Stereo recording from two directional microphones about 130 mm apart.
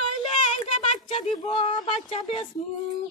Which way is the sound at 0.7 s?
50° left (ahead or behind).